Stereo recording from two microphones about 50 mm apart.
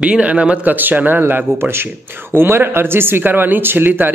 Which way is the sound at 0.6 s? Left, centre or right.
Right.